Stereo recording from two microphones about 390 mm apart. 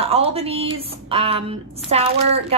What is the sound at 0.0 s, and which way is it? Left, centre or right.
Speech, centre.